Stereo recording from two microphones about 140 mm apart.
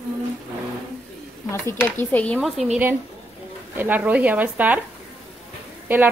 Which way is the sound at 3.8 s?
10° right (ahead or behind).